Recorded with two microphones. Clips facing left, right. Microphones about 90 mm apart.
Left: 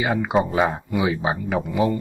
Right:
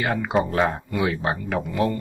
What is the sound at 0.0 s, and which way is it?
Speech, 5° left (ahead or behind).